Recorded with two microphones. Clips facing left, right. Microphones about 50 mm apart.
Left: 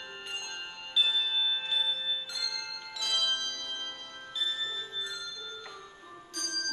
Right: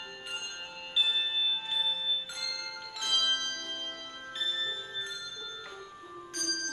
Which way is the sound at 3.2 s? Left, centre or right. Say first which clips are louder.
Right 1 dB; right.